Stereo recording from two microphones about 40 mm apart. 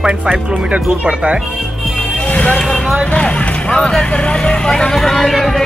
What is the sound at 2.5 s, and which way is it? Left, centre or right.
Vehicle, centre.